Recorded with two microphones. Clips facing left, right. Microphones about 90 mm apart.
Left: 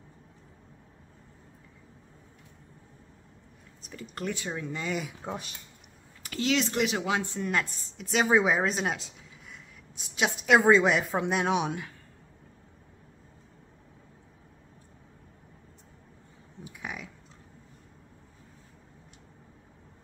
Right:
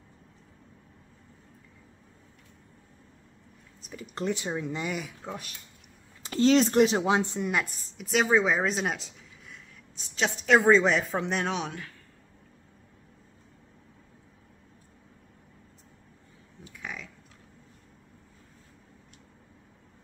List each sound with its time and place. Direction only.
3.8 s speech: 10° right (ahead or behind)
4.1 s speech: 20° right (ahead or behind)
5.2 s speech: 20° left (ahead or behind)
6.2 s speech: 35° right (ahead or behind)
7.4 s a woman's voice: 5° right (ahead or behind); by 11.9 s 15° left (ahead or behind)
16.6 s a sound: 15° left (ahead or behind)